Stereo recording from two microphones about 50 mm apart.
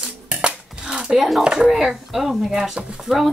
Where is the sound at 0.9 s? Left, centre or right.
Centre.